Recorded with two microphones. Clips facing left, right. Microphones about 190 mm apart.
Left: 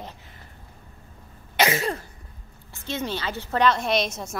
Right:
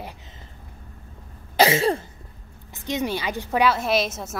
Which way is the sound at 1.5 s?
30° right (ahead or behind).